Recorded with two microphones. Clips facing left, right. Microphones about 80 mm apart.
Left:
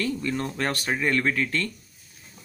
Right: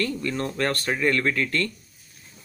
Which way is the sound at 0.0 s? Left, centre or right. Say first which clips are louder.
Right 1 dB; centre.